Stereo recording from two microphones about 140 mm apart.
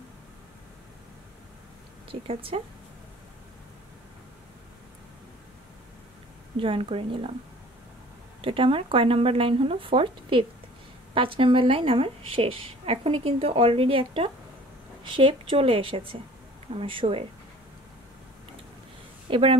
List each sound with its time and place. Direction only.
2.0 s speech: 40° right (ahead or behind)
6.5 s speech: 40° right (ahead or behind)
8.4 s speech: 40° right (ahead or behind)
19.2 s a woman's voice: 40° right (ahead or behind)